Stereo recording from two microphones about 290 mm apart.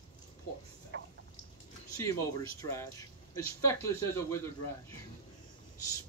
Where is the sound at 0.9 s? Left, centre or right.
Right.